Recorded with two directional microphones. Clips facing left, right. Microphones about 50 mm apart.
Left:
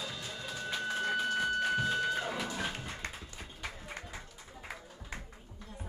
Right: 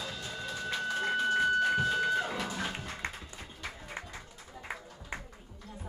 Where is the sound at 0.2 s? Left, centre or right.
Centre.